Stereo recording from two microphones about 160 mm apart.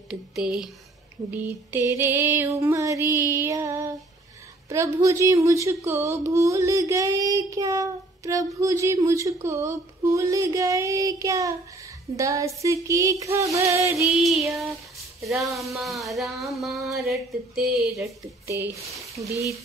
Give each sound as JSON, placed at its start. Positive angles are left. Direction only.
{"t": 0.1, "sound": "speech", "side_deg": -5}
{"t": 1.3, "sound": "female singing", "side_deg": -10}
{"t": 4.6, "sound": "speech", "side_deg": -20}
{"t": 14.0, "sound": "a woman's voice", "side_deg": 0}
{"t": 18.0, "sound": "female singing", "side_deg": -15}
{"t": 19.1, "sound": "speech", "side_deg": -20}